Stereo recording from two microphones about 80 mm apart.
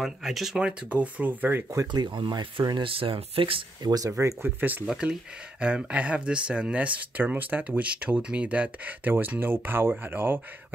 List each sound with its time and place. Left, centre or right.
0.0 s speech: centre; by 1.6 s right
1.9 s speech: right
4.2 s speech: right
4.6 s speech: right